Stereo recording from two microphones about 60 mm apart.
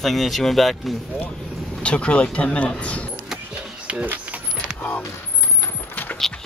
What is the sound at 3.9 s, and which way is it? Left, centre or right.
Vehicle, right.